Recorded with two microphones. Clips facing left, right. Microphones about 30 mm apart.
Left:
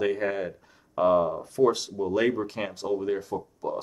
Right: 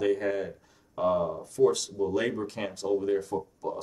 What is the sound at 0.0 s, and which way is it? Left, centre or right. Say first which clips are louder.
Speech: left 1 dB; centre.